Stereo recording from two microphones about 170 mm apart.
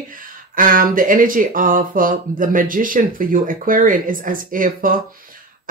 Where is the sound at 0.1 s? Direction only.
55° right (ahead or behind).